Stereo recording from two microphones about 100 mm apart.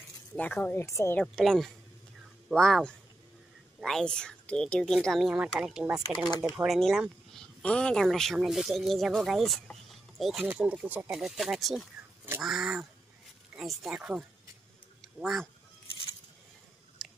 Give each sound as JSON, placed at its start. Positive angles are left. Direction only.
{"t": 0.4, "sound": "speech", "side_deg": 15}
{"t": 0.8, "sound": "speech", "side_deg": 30}
{"t": 1.2, "sound": "speech", "side_deg": 5}
{"t": 11.1, "sound": "speech", "side_deg": -5}
{"t": 17.0, "sound": "chewing", "side_deg": 0}